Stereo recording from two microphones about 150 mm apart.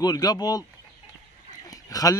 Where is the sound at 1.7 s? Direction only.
25° left (ahead or behind).